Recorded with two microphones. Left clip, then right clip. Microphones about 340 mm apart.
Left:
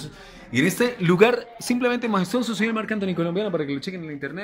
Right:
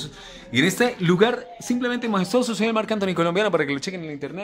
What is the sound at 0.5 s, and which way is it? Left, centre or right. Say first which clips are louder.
Speech: right 2 dB; centre.